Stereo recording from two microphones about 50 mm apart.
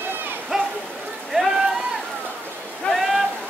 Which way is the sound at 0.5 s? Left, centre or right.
Centre.